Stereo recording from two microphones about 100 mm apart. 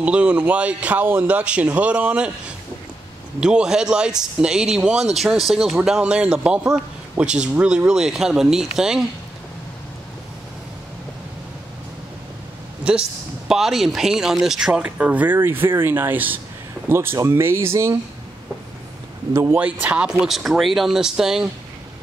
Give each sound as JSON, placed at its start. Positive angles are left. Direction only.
{"t": 0.0, "sound": "speech", "side_deg": -10}
{"t": 3.3, "sound": "speech", "side_deg": -10}
{"t": 13.5, "sound": "speech", "side_deg": 0}
{"t": 19.3, "sound": "speech", "side_deg": -25}
{"t": 19.6, "sound": "speech", "side_deg": -15}